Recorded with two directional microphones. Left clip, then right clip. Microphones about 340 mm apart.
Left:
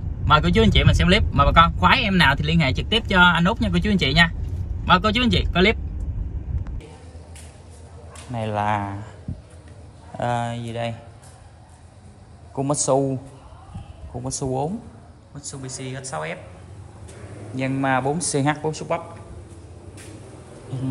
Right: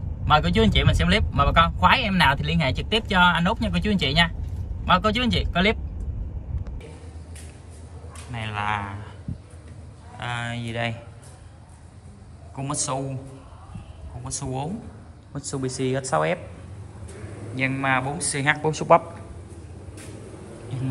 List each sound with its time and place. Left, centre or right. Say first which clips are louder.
0.3 s speech: left 2 dB; centre
8.3 s a man's voice: left 4 dB; centre
10.1 s a man's voice: left 6 dB; centre
12.5 s a man's voice: left 8 dB; centre
14.2 s a man's voice: left 6 dB; centre
15.3 s speech: right 6 dB; centre
17.6 s a man's voice: left 1 dB; centre